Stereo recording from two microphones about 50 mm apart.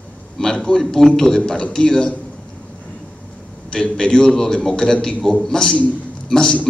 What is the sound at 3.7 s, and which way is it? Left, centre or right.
A man's voice, centre.